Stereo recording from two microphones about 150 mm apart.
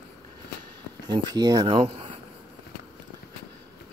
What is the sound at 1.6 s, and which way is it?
Speech, 35° right (ahead or behind).